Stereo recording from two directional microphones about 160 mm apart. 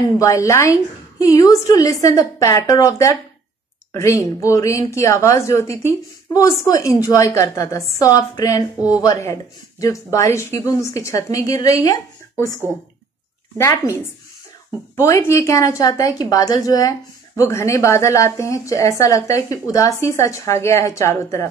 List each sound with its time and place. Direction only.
0.2 s speech: 20° left (ahead or behind)
13.6 s speech: 20° left (ahead or behind)
15.0 s speech: 20° left (ahead or behind)